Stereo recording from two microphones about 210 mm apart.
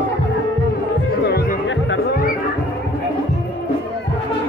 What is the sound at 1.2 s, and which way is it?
Music, 50° left (ahead or behind).